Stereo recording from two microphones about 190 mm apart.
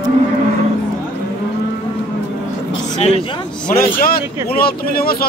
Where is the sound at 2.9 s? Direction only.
35° left (ahead or behind).